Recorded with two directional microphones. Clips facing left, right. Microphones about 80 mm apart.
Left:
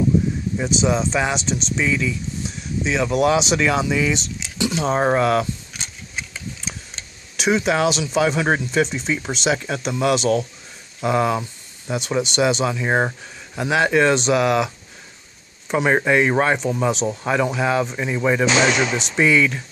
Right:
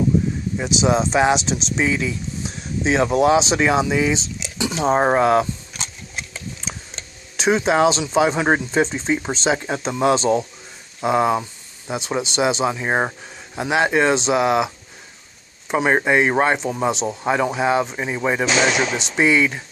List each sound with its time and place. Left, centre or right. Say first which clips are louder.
0.6 s speech: left 1 dB; centre
0.8 s speech: right 5 dB; right
7.3 s speech: right 2 dB; right
15.7 s speech: even; centre